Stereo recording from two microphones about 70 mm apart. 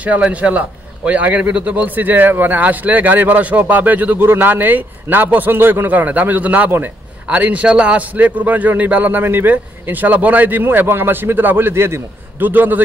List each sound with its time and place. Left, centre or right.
0.0 s a man's voice: centre